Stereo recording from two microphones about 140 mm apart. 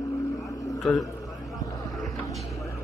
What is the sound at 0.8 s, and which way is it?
Speech, centre (ahead or behind).